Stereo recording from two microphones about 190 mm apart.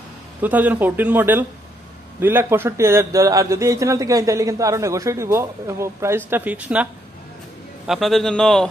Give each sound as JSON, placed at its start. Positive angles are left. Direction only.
{"t": 0.4, "sound": "a man's voice", "side_deg": -10}